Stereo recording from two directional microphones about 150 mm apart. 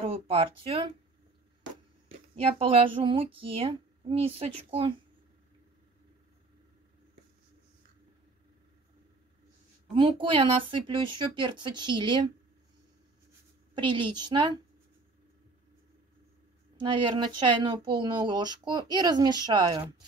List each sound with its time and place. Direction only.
0.0 s speech: 40° right (ahead or behind)
2.0 s speech: 40° right (ahead or behind)
9.9 s speech: 35° right (ahead or behind)
13.7 s speech: 30° right (ahead or behind)
16.7 s speech: 35° right (ahead or behind)